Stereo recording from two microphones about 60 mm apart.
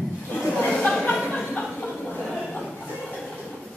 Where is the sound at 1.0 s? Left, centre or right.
Left.